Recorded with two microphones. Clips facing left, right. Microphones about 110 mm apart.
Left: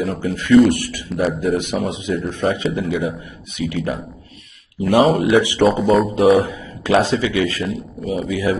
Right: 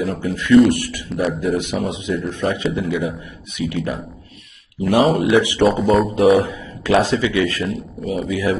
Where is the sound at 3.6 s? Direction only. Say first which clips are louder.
Even; 25° right (ahead or behind).